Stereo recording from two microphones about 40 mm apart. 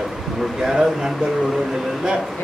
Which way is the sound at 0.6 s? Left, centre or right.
Centre.